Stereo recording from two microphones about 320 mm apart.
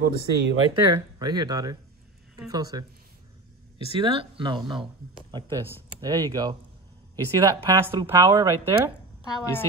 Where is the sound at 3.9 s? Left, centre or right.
Centre.